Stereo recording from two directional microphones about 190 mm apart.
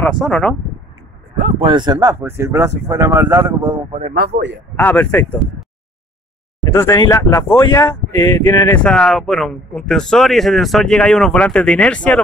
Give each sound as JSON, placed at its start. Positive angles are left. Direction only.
{"t": 0.2, "sound": "speech", "side_deg": 5}
{"t": 1.6, "sound": "speech", "side_deg": -25}
{"t": 4.1, "sound": "speech", "side_deg": -60}
{"t": 4.7, "sound": "speech", "side_deg": 10}
{"t": 8.7, "sound": "speech", "side_deg": 5}